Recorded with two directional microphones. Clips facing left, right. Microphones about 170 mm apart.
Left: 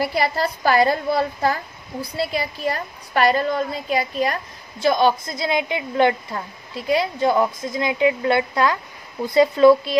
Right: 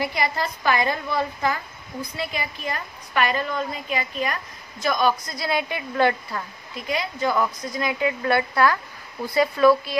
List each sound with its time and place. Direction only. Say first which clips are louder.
0.0 s a woman's voice: left 4 dB; 35° left (ahead or behind)